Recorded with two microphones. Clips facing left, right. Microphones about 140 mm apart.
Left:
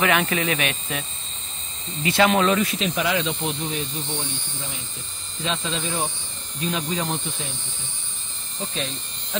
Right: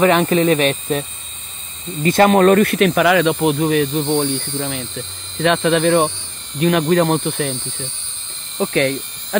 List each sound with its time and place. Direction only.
0.0 s speech: 35° right (ahead or behind)
2.0 s speech: 45° right (ahead or behind); by 9.4 s 70° right (ahead or behind)